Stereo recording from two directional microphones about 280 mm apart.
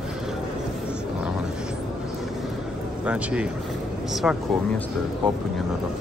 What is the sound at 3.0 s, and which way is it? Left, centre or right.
Speech, centre.